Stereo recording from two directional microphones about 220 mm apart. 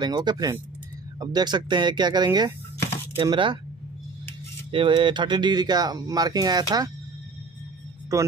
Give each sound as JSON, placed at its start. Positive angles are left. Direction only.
{"t": 0.0, "sound": "speech", "side_deg": -20}
{"t": 4.6, "sound": "speech", "side_deg": -25}
{"t": 8.1, "sound": "speech", "side_deg": -15}